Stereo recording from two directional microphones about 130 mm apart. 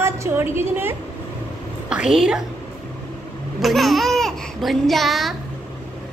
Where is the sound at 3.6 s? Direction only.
Centre (ahead or behind).